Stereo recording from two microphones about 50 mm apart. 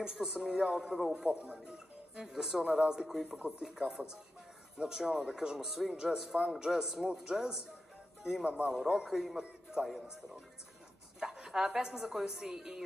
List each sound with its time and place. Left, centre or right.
0.0 s speech: centre
1.2 s speech: centre
8.5 s speech: right
8.8 s speech: centre
9.4 s a sound: centre
11.1 s a woman's voice: centre